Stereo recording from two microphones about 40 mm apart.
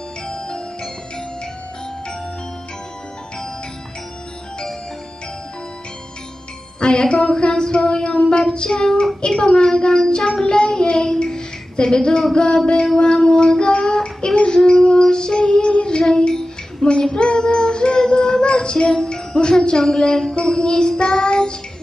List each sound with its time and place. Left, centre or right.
6.8 s speech: left
12.8 s child singing: centre